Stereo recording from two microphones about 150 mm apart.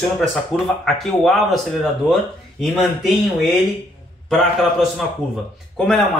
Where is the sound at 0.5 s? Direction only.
5° left (ahead or behind).